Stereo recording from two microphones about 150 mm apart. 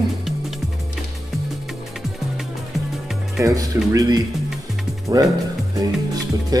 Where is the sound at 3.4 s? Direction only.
25° right (ahead or behind).